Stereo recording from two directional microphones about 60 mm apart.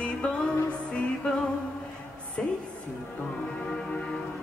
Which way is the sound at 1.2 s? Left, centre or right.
Centre.